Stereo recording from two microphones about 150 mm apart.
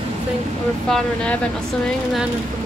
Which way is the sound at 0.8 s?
5° left (ahead or behind).